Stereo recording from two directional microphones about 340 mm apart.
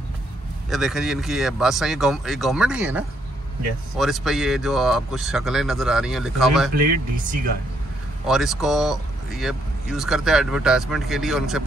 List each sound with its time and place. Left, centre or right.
0.7 s speech: centre
6.7 s speech: right
8.3 s speech: centre